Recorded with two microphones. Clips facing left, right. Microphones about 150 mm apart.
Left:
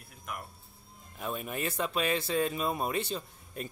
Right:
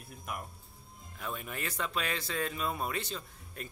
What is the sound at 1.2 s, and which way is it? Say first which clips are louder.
Speech: left 4 dB; 20° left (ahead or behind).